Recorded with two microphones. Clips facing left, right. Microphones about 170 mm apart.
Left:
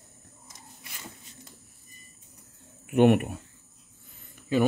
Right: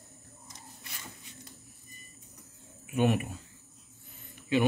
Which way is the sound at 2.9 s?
60° left (ahead or behind).